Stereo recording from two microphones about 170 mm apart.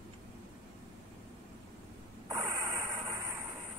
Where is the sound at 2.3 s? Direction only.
20° right (ahead or behind).